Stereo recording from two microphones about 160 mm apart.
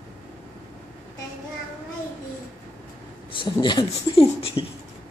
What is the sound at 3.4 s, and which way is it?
Speech, 30° left (ahead or behind).